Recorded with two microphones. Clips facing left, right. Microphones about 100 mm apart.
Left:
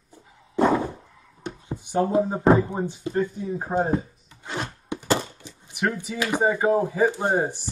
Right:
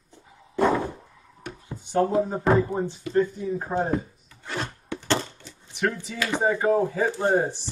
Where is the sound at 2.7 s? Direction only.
20° left (ahead or behind).